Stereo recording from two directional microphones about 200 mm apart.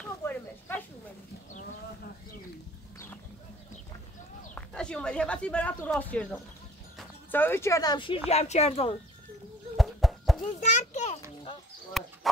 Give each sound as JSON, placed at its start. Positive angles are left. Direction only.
{"t": 0.0, "sound": "snake", "side_deg": 10}
{"t": 4.6, "sound": "speech", "side_deg": 5}
{"t": 8.3, "sound": "speech", "side_deg": 35}
{"t": 9.8, "sound": "a sound", "side_deg": 0}
{"t": 10.4, "sound": "children playing", "side_deg": 35}
{"t": 12.0, "sound": "a sound", "side_deg": 0}